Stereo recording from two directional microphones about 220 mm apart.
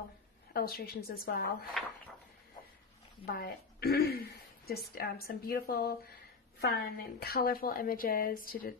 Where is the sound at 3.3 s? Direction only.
45° left (ahead or behind).